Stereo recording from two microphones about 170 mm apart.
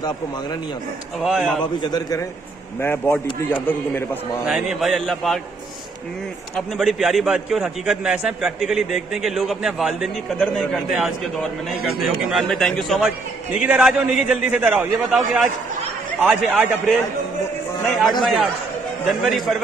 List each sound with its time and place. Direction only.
1.2 s a man's voice: centre (ahead or behind)
1.8 s a man's voice: 25° left (ahead or behind)
4.5 s a man's voice: 5° right (ahead or behind)
6.5 s a man's voice: centre (ahead or behind)
18.2 s a man's voice: centre (ahead or behind)